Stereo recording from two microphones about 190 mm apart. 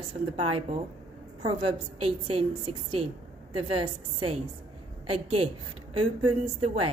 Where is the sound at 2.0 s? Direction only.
30° right (ahead or behind).